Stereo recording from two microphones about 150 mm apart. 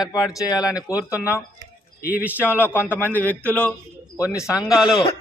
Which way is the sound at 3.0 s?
15° right (ahead or behind).